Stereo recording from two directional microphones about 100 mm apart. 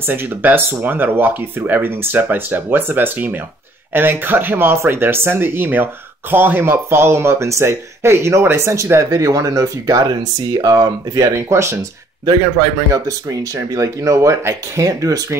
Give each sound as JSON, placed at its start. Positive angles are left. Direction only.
{"t": 0.0, "sound": "speech", "side_deg": -20}